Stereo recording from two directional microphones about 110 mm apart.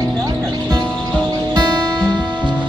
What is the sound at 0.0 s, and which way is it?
Music, 35° right (ahead or behind).